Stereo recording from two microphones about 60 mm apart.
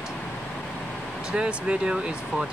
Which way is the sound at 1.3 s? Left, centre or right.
Centre.